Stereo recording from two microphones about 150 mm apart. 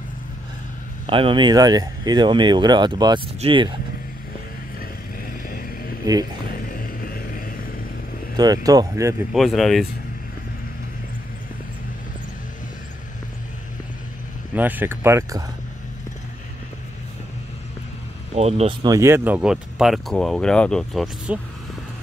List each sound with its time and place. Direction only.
1.0 s speech: 35° right (ahead or behind)
5.5 s vehicle: 75° left (ahead or behind)
6.4 s a sound: 75° left (ahead or behind)
8.6 s speech: 25° right (ahead or behind)
9.3 s speech: centre (ahead or behind)
14.5 s speech: 10° right (ahead or behind)
18.3 s speech: 45° right (ahead or behind)
18.9 s speech: 15° right (ahead or behind); by 21.4 s centre (ahead or behind)